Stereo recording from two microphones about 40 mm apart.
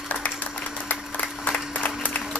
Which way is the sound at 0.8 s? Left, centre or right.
Left.